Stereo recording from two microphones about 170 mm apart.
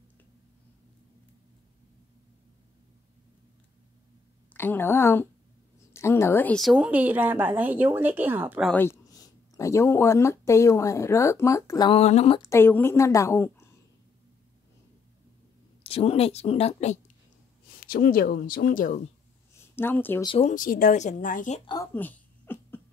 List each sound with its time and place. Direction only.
4.6 s a woman's voice: 15° left (ahead or behind); by 8.6 s 10° right (ahead or behind)
8.6 s speech: 15° left (ahead or behind)
11.9 s a woman's voice: 40° left (ahead or behind)
12.4 s a woman's voice: 15° left (ahead or behind)
15.8 s a woman's voice: 35° left (ahead or behind)
17.7 s speech: 60° left (ahead or behind)
19.7 s a woman's voice: 10° left (ahead or behind)
20.2 s a woman's voice: 35° left (ahead or behind)
20.5 s a woman's voice: 55° left (ahead or behind)
21.9 s a sound: 10° left (ahead or behind)